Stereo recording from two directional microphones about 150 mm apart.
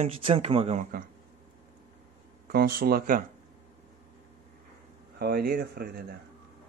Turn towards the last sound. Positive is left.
turn(degrees=-90)